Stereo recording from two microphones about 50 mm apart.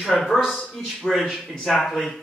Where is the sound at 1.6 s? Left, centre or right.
Centre.